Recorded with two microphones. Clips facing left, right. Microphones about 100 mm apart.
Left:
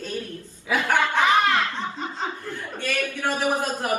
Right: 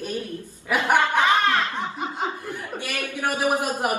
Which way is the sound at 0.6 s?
15° right (ahead or behind).